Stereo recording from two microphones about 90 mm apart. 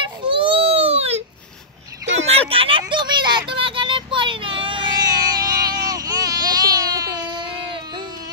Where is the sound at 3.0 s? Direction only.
55° right (ahead or behind).